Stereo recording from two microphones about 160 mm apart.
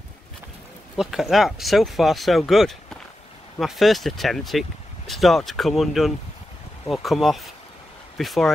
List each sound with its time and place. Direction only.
0.9 s speech: centre (ahead or behind)